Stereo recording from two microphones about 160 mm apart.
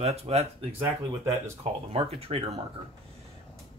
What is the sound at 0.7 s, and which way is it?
Speech, 15° right (ahead or behind).